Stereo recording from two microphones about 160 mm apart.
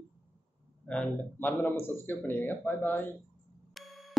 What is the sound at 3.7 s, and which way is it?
Busy signal, centre (ahead or behind).